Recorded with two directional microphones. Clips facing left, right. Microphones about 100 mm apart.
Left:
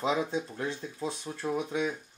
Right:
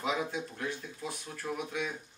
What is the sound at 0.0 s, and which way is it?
Speech, 25° left (ahead or behind).